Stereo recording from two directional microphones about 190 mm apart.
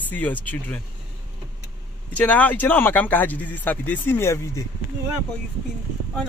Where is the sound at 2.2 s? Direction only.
10° left (ahead or behind).